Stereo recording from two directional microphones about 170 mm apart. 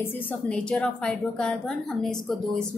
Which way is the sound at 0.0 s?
10° left (ahead or behind).